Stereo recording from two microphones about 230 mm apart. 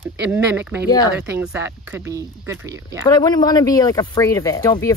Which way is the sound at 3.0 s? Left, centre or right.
Centre.